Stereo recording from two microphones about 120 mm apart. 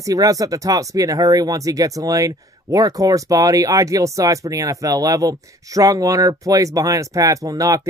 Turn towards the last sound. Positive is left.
turn(degrees=-30)  # may be behind; listen again after turning